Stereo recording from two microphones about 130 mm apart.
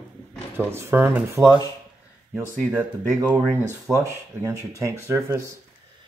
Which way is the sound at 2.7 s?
10° right (ahead or behind).